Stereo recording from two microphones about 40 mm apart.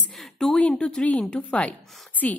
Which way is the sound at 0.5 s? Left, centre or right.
Left.